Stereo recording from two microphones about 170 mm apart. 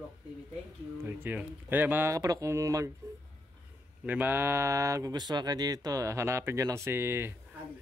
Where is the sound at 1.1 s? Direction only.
10° right (ahead or behind).